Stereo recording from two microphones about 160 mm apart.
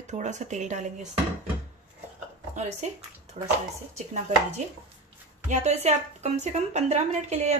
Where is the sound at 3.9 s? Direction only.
45° right (ahead or behind).